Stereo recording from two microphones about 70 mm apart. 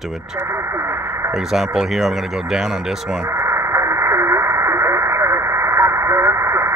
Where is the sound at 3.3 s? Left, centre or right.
Right.